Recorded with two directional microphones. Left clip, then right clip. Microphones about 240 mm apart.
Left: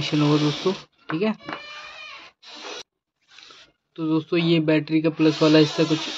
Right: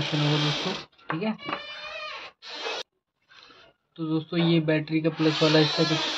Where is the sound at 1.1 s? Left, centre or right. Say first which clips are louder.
Left 6 dB; left.